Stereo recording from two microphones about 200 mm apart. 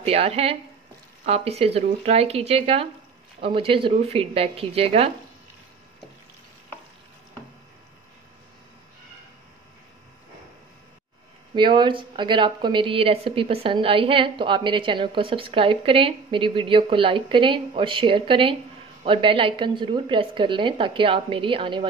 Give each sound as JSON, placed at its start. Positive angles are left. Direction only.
{"t": 0.0, "sound": "a woman's voice", "side_deg": -30}
{"t": 11.5, "sound": "a woman's voice", "side_deg": -25}